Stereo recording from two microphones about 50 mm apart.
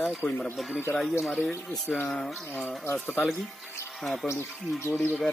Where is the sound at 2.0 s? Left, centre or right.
Centre.